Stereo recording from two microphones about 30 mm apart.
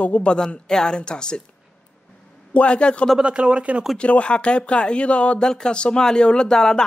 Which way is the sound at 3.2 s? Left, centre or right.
Right.